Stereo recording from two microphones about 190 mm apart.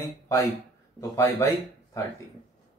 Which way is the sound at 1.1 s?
15° left (ahead or behind).